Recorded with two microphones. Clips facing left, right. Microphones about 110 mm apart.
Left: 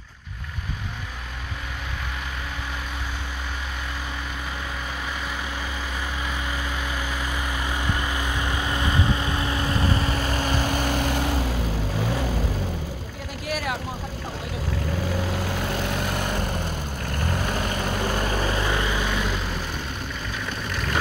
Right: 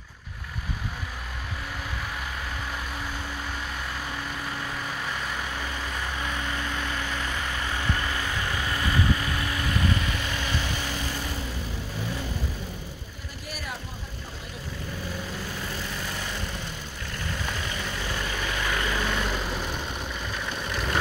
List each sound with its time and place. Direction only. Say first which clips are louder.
6.2 s vehicle: left 1 dB; 5° left (ahead or behind); by 12.3 s 85° left
13.5 s vehicle: left 9 dB; 90° left
15.1 s vehicle: left 7 dB; 80° left; by 18.9 s 25° left (ahead or behind)
18.9 s vehicle: left 2 dB; 5° left (ahead or behind)